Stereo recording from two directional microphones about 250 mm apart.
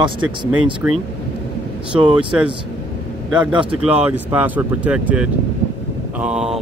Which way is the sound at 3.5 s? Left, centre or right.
Centre.